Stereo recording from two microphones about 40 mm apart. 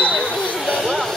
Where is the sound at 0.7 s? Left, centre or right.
Centre.